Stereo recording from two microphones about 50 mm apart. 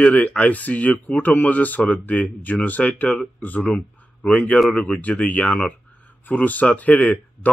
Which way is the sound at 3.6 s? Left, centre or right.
Left.